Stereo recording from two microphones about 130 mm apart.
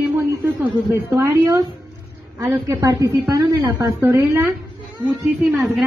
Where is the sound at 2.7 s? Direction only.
25° right (ahead or behind).